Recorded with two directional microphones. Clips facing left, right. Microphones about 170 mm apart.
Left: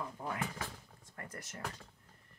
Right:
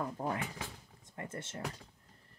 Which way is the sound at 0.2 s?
40° right (ahead or behind).